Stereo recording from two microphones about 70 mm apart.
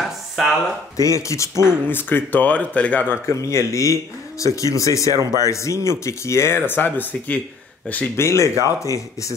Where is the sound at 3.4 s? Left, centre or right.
Left.